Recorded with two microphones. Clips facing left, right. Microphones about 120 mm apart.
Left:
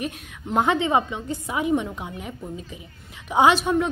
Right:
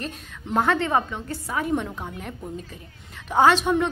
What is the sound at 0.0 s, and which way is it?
A woman's voice, 15° left (ahead or behind).